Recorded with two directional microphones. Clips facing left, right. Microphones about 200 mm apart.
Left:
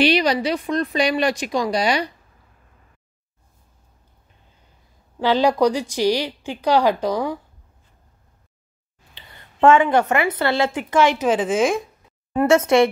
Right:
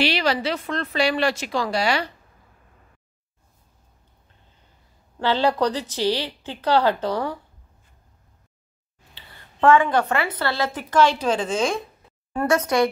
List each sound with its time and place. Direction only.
0.0 s speech: 15° left (ahead or behind)
5.2 s speech: 15° left (ahead or behind)
9.1 s a woman's voice: 20° left (ahead or behind)
11.2 s speech: 5° left (ahead or behind)
12.4 s a woman's voice: 25° left (ahead or behind)